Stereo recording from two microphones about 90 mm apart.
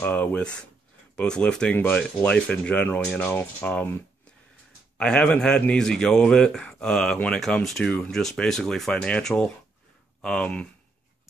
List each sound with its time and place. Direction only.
0.1 s speech: 15° left (ahead or behind)
3.3 s speech: 20° left (ahead or behind)
4.9 s speech: 10° left (ahead or behind)